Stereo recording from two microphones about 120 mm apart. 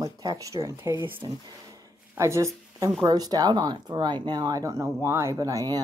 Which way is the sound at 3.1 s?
35° right (ahead or behind).